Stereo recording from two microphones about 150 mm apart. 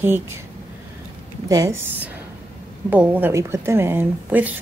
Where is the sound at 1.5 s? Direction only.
20° right (ahead or behind).